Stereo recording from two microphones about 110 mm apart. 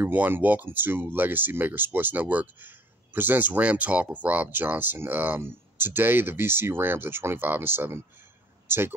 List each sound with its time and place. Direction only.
0.0 s speech: 15° right (ahead or behind)